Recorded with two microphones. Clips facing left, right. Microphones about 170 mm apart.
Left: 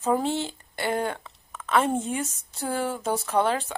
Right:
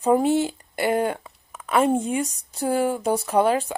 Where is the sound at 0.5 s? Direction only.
15° right (ahead or behind).